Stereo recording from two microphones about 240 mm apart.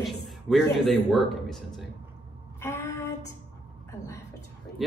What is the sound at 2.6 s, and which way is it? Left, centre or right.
Speech, centre.